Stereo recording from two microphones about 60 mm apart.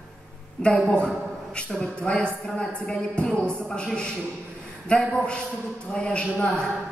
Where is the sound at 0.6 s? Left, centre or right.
Centre.